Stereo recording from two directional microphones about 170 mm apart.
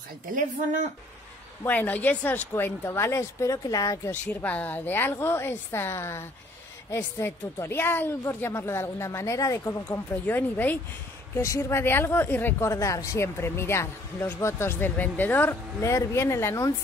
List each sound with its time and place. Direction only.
0.3 s speech: 50° right (ahead or behind)
1.6 s a woman's voice: 10° left (ahead or behind)